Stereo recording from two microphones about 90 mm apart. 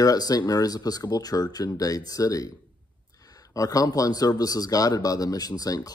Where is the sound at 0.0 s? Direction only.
45° left (ahead or behind).